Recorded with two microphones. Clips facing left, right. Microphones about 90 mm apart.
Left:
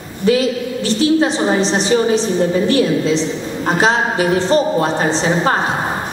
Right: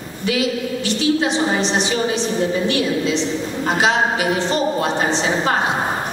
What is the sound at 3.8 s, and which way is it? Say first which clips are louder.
A woman's voice: left 2 dB; 35° left (ahead or behind).